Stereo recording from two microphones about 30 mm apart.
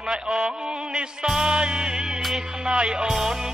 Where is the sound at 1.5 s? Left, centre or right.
Right.